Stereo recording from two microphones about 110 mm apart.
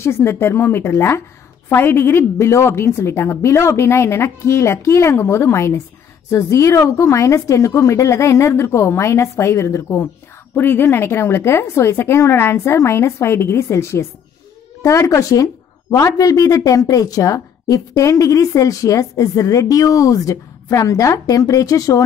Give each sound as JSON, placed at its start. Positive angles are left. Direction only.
{"t": 0.0, "sound": "a woman's voice", "side_deg": 25}